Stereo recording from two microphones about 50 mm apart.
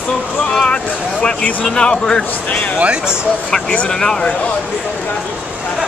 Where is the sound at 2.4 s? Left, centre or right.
Left.